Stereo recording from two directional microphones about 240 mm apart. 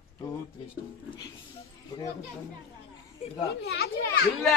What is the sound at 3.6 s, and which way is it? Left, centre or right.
Speech, left.